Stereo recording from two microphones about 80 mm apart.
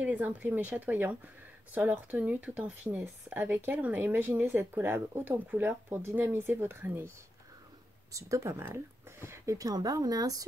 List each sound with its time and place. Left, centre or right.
0.0 s speech: centre
8.1 s speech: right